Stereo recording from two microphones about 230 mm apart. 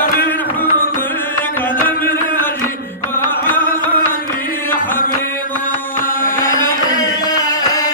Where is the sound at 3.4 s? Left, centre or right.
Centre.